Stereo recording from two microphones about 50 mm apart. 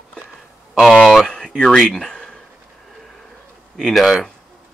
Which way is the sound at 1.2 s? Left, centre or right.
Centre.